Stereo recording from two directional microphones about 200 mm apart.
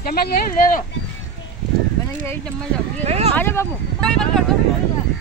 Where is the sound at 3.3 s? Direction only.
10° left (ahead or behind).